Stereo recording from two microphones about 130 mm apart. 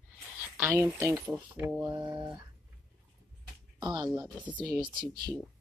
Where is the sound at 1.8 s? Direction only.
30° right (ahead or behind).